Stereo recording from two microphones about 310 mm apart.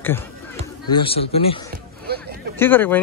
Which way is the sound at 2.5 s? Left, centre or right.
Centre.